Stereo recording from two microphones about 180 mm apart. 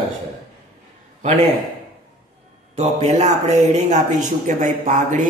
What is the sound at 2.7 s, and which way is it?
Speech, 35° right (ahead or behind).